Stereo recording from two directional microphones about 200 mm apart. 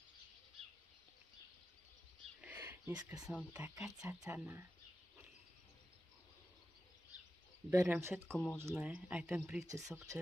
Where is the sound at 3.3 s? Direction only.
5° right (ahead or behind).